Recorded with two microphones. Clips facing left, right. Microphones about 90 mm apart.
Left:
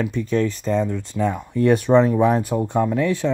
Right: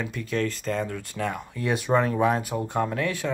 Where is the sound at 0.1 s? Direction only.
30° left (ahead or behind).